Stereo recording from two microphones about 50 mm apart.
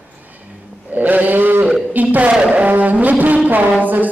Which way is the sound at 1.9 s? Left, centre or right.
Right.